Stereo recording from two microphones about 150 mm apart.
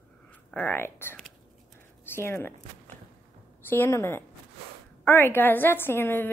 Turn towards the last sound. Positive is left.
turn(degrees=15)  # may be behind; listen again after turning